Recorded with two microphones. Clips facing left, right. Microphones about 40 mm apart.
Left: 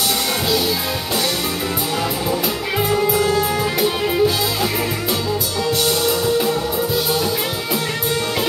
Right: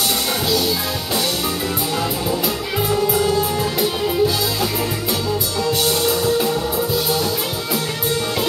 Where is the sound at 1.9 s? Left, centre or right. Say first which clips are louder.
Left 1 dB; centre.